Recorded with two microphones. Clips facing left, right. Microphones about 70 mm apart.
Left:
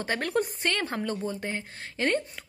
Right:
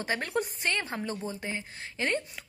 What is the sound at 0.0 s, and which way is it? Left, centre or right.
A woman's voice, left.